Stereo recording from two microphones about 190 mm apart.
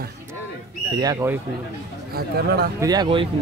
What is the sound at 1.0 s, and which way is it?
Speech, 15° right (ahead or behind).